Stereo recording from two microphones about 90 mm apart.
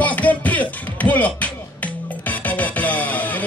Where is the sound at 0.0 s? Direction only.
15° left (ahead or behind).